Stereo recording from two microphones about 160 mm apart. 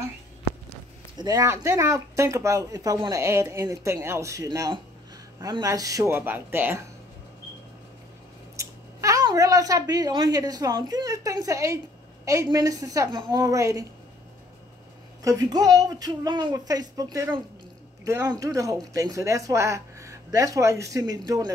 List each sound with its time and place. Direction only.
1.1 s speech: 25° right (ahead or behind)
8.5 s speech: 20° right (ahead or behind)
15.2 s speech: 20° right (ahead or behind)